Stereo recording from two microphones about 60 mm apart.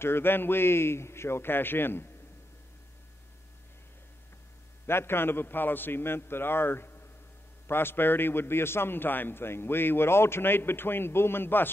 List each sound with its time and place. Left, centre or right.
0.0 s a man's voice: left
4.8 s a man's voice: left